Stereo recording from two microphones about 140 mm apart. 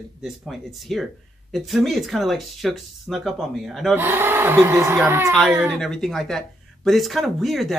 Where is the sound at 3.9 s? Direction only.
15° right (ahead or behind).